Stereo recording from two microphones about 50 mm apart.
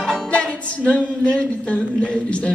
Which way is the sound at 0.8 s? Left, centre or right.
Left.